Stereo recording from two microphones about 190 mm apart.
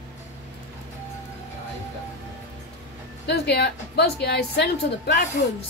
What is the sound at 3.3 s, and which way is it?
A woman's voice, 60° left (ahead or behind).